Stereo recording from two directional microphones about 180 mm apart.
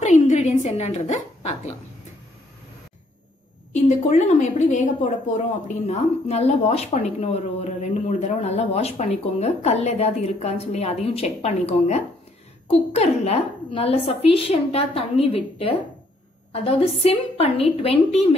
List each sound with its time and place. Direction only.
0.0 s a woman's voice: 40° left (ahead or behind)
3.7 s a woman's voice: 40° left (ahead or behind)